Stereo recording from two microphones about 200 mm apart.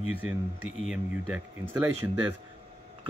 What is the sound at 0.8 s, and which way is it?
Speech, centre (ahead or behind).